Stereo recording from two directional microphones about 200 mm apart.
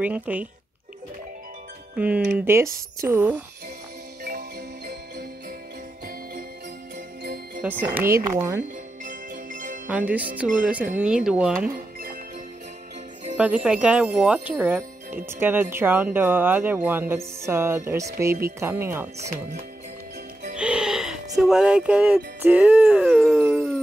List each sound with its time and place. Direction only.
0.0 s speech: 5° right (ahead or behind)
2.0 s speech: 5° right (ahead or behind)
4.2 s music: 55° right (ahead or behind)
7.8 s speech: 10° right (ahead or behind)
9.0 s music: 40° right (ahead or behind)
9.8 s speech: 5° right (ahead or behind)
11.2 s wind chime: 5° right (ahead or behind)
13.4 s wind chime: 5° right (ahead or behind)
15.2 s speech: 10° right (ahead or behind)
20.5 s music: 5° right (ahead or behind)